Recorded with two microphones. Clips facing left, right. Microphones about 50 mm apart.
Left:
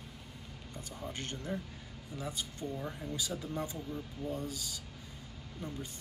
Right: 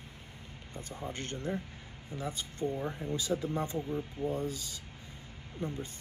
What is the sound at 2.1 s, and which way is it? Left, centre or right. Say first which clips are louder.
Speech: right 2 dB; right.